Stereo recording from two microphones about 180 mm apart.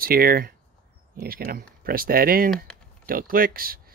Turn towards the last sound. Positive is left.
turn(degrees=-55)  # may be behind; listen again after turning